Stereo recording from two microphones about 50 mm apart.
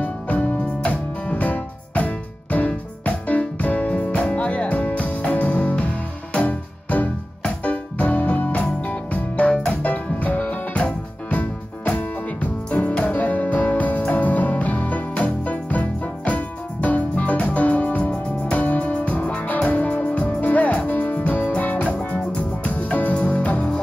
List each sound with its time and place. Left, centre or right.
0.0 s music: left